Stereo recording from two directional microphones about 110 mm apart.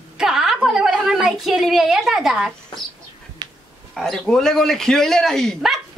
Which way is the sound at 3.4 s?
40° right (ahead or behind).